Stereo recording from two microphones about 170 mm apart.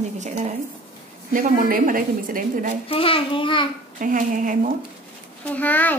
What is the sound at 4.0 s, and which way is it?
Speech, 50° right (ahead or behind).